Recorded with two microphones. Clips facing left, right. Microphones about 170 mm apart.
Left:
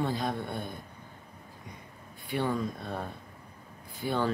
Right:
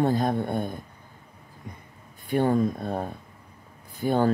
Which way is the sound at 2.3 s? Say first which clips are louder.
Right 8 dB; 45° right (ahead or behind).